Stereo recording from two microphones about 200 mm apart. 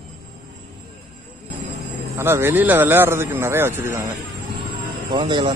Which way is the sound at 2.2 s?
10° right (ahead or behind).